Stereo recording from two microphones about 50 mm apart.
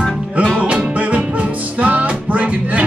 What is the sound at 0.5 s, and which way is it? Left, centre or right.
Music, right.